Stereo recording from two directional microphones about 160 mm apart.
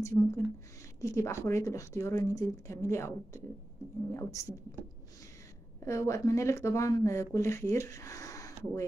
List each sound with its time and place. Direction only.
0.0 s a woman's voice: 20° left (ahead or behind)
5.9 s speech: 20° left (ahead or behind)